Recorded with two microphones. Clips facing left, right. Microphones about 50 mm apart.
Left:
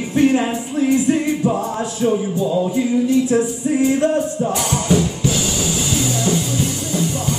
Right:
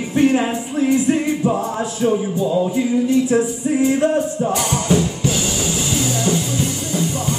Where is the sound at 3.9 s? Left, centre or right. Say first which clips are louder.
Even; centre.